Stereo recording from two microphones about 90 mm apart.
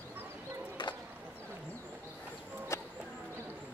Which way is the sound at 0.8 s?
65° left (ahead or behind).